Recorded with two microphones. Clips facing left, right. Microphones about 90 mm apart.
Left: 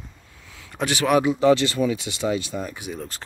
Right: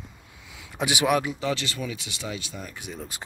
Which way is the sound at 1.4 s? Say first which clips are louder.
Left 11 dB; 40° left (ahead or behind).